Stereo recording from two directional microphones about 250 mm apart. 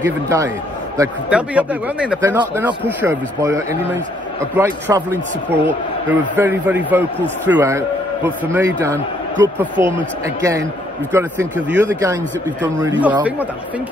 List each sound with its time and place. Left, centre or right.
0.0 s a man's voice: centre
11.1 s a man's voice: centre